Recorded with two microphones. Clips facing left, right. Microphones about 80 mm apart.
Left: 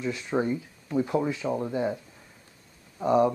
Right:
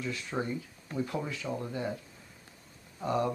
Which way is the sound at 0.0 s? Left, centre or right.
Left.